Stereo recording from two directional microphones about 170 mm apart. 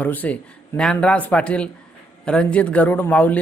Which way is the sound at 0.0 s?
10° left (ahead or behind).